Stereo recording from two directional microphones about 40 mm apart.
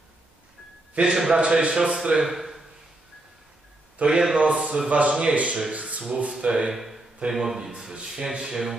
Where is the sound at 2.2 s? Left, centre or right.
Centre.